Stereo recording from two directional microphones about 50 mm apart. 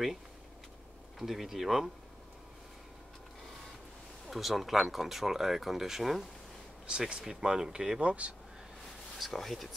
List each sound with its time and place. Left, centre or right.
1.2 s speech: centre
4.3 s speech: centre
7.0 s speech: centre
9.2 s speech: centre